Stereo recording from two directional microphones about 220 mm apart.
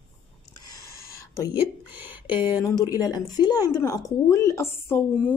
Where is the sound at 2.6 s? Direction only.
15° left (ahead or behind).